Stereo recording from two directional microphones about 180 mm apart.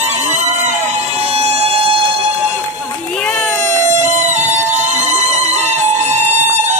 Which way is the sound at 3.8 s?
40° right (ahead or behind).